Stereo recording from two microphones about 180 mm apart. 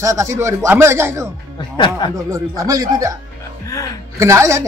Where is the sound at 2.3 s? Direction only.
20° right (ahead or behind).